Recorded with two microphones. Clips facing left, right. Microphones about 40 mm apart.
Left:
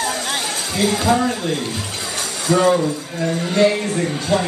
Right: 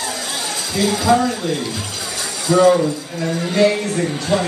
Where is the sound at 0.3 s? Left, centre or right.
Left.